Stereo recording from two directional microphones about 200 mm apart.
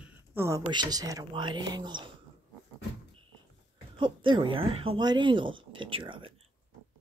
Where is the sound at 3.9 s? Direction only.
25° right (ahead or behind).